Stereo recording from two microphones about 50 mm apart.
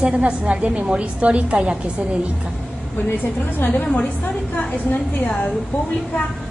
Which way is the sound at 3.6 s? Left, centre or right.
Left.